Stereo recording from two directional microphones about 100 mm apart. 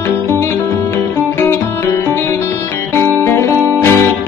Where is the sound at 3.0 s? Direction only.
25° left (ahead or behind).